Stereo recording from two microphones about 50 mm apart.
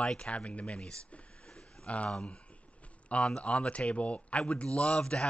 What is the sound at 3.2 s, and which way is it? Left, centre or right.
A man's voice, centre.